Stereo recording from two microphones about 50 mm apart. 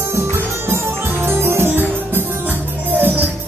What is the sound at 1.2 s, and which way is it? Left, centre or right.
Music, right.